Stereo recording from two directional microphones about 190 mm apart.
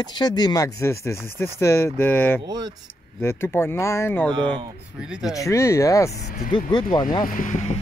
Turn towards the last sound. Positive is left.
turn(degrees=40)  # may be behind; listen again after turning